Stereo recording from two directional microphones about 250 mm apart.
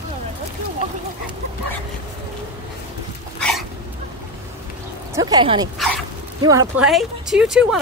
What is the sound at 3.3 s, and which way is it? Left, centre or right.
Dog, centre.